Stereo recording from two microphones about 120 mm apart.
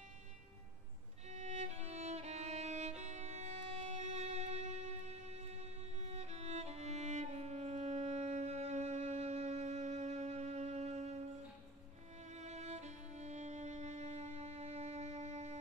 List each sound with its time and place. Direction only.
1.3 s violin: 70° right (ahead or behind)
12.3 s music: 70° right (ahead or behind)